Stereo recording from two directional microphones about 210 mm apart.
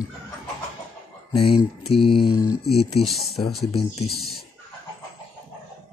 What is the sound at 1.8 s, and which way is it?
Mantra, centre (ahead or behind).